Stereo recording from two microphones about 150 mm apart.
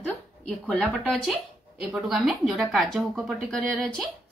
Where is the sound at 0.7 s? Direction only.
5° left (ahead or behind).